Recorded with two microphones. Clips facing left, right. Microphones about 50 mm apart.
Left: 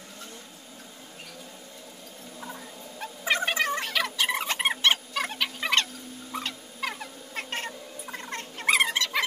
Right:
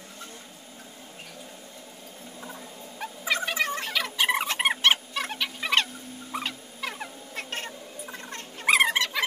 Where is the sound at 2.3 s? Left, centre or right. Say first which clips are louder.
Left 2 dB; centre.